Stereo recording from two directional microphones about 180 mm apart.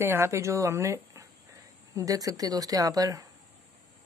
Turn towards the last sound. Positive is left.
turn(degrees=-20)  # may be behind; listen again after turning